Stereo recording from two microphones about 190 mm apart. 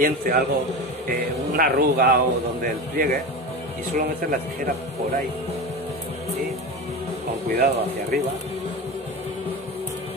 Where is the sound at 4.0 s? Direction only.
50° right (ahead or behind).